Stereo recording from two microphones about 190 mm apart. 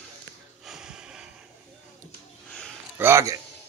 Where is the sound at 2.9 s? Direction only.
15° right (ahead or behind).